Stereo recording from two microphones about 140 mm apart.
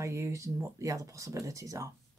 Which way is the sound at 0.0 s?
20° right (ahead or behind).